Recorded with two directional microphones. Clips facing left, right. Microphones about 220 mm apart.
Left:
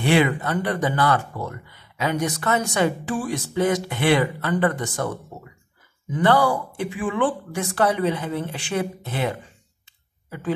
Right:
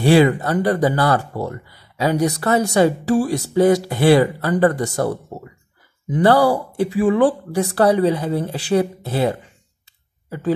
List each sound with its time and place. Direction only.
0.1 s speech: 35° right (ahead or behind)